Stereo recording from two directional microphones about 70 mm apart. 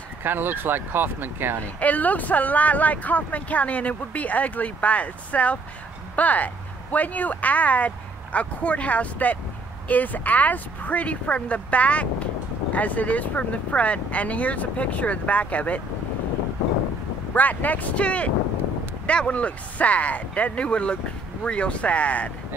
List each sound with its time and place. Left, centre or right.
0.2 s speech: right
1.8 s speech: left
17.3 s speech: left